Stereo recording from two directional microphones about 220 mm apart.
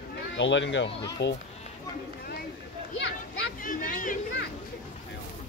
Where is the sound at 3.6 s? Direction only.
35° left (ahead or behind).